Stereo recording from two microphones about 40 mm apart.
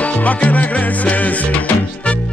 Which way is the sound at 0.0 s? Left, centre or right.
Left.